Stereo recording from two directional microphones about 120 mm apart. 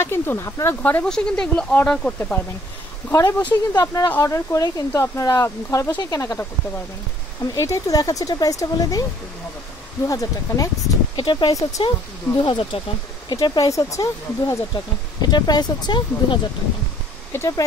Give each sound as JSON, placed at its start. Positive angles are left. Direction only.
{"t": 0.0, "sound": "speech", "side_deg": 20}
{"t": 0.8, "sound": "speech", "side_deg": 10}
{"t": 3.1, "sound": "speech", "side_deg": 25}
{"t": 7.5, "sound": "speech", "side_deg": 25}
{"t": 10.0, "sound": "speech", "side_deg": 30}
{"t": 11.1, "sound": "speech", "side_deg": 40}
{"t": 13.3, "sound": "speech", "side_deg": 30}
{"t": 17.3, "sound": "speech", "side_deg": 25}